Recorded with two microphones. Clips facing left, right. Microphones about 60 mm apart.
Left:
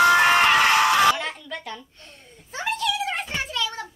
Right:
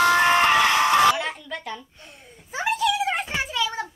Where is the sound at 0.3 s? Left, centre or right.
Left.